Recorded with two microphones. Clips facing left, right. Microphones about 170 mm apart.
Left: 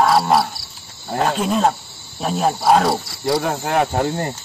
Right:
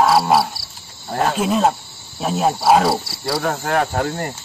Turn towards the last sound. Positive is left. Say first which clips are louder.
# left 2 dB
turn(degrees=15)  # may be behind; listen again after turning